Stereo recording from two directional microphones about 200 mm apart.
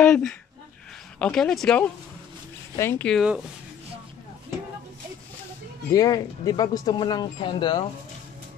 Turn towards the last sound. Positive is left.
turn(degrees=20)  # may be behind; listen again after turning